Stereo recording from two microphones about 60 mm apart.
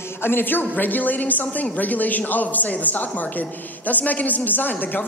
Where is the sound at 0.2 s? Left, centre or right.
Left.